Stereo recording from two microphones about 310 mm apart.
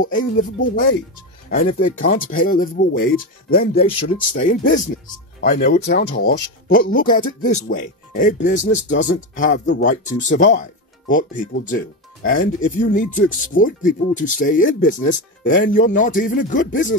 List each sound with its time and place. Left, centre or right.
1.5 s speech: left